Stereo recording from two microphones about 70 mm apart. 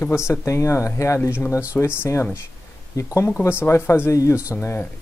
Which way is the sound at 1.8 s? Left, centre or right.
Left.